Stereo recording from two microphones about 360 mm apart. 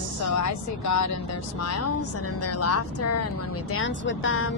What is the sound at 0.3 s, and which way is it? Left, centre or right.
A woman's voice, left.